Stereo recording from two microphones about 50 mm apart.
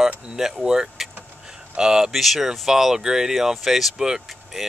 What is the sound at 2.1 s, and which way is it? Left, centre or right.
Speech, centre.